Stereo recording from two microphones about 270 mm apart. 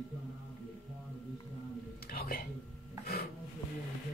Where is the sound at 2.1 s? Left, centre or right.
Left.